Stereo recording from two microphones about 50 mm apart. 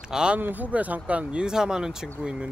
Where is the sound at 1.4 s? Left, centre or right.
Centre.